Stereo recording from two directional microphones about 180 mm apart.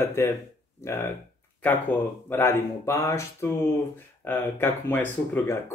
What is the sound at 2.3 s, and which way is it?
A man's voice, 15° left (ahead or behind).